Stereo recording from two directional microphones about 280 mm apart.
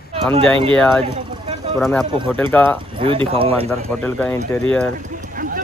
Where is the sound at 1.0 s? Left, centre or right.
Centre.